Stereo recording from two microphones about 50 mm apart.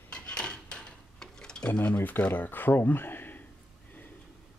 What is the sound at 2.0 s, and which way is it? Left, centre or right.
Speech, left.